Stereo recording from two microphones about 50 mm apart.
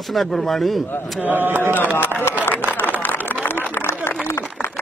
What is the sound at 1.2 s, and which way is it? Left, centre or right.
Speech, right.